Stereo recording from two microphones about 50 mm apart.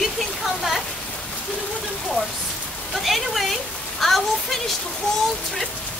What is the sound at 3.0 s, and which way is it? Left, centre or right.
Speech, centre.